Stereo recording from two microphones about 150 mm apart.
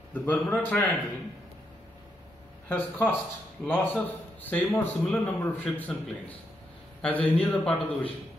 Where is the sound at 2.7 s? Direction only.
15° left (ahead or behind).